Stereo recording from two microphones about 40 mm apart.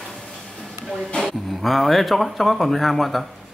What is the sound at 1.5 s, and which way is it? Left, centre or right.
Speech, centre.